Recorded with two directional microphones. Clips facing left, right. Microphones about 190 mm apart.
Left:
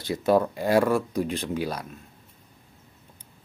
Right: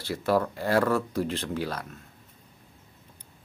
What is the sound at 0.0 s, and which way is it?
Speech, 20° left (ahead or behind).